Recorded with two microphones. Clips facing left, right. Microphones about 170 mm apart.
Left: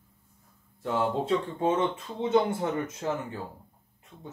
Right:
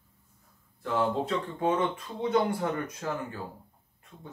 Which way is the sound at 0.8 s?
25° left (ahead or behind).